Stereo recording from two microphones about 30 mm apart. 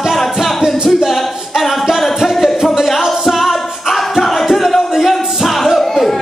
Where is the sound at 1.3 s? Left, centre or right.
Centre.